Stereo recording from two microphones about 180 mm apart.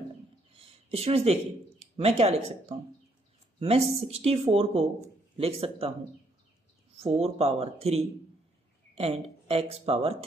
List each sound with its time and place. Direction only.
0.6 s speech: 35° right (ahead or behind)
3.5 s speech: 35° right (ahead or behind)
7.0 s speech: 35° right (ahead or behind)